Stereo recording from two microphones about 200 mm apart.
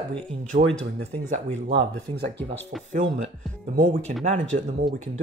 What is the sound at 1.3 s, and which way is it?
Speech, 35° right (ahead or behind).